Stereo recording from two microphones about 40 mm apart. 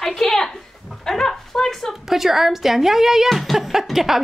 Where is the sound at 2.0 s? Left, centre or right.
Centre.